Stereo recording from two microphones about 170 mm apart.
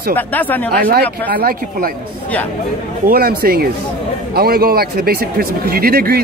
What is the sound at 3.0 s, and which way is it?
Speech, 60° right (ahead or behind).